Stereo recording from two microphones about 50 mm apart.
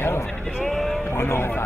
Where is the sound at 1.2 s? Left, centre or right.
Left.